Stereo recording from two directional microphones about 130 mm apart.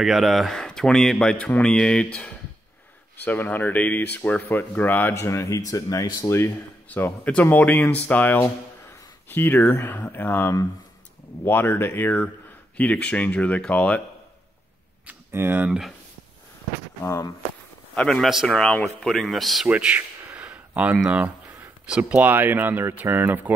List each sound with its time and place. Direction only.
0.0 s speech: centre (ahead or behind)
3.2 s speech: 15° left (ahead or behind)
15.0 s speech: 15° right (ahead or behind)
17.0 s speech: 20° left (ahead or behind)
17.9 s speech: 5° left (ahead or behind)
19.7 s speech: 10° right (ahead or behind)